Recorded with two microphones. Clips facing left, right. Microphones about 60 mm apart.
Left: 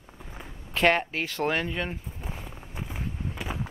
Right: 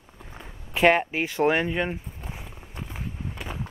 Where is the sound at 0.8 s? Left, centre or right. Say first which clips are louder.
Right 3 dB; centre.